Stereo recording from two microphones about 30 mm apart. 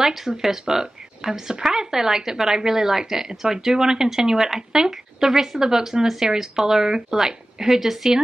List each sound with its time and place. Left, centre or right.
0.0 s speech: centre
3.3 s speech: right